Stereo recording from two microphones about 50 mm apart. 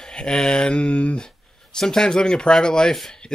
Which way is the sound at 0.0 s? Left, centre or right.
Centre.